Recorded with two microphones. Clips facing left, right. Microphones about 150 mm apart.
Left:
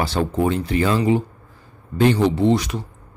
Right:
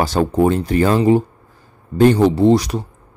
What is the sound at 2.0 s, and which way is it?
Speech, 40° right (ahead or behind).